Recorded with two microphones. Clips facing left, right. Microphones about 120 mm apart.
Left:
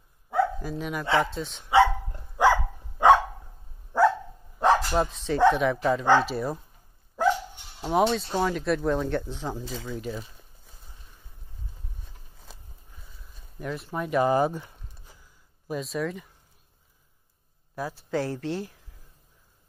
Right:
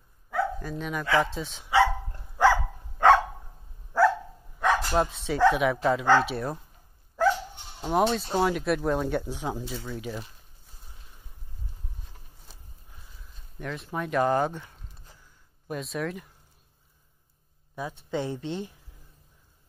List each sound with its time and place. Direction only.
0.6 s speech: 5° left (ahead or behind)
1.7 s dog: 20° left (ahead or behind)
4.6 s dog: 30° left (ahead or behind)
4.9 s speech: 5° right (ahead or behind)
7.8 s speech: centre (ahead or behind)
13.0 s speech: centre (ahead or behind)
15.7 s speech: centre (ahead or behind)
17.7 s speech: centre (ahead or behind)